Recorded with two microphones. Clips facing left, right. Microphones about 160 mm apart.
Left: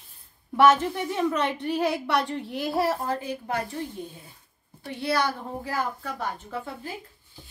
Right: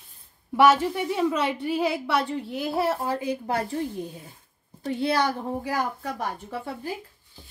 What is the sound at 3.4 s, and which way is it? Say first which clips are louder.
Speech: right 3 dB; 30° right (ahead or behind).